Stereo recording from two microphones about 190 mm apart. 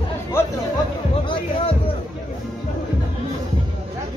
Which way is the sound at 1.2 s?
25° left (ahead or behind).